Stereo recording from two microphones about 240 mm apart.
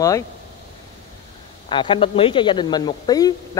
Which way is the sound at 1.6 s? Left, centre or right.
Left.